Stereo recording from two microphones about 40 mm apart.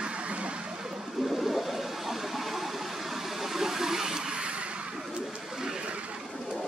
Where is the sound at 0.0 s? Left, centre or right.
Right.